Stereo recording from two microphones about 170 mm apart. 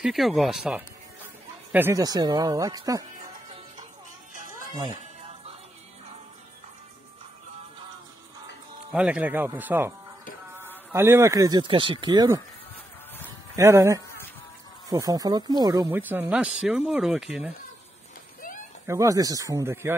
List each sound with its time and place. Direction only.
0.0 s speech: centre (ahead or behind); by 3.1 s 20° right (ahead or behind)
4.3 s music: 50° right (ahead or behind)
8.9 s speech: 5° right (ahead or behind); by 12.4 s 25° right (ahead or behind)
13.6 s speech: 15° right (ahead or behind)
16.0 s speech: 10° right (ahead or behind)
18.9 s speech: 20° right (ahead or behind)